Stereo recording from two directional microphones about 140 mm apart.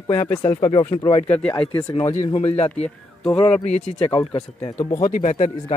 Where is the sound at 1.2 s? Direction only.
10° left (ahead or behind).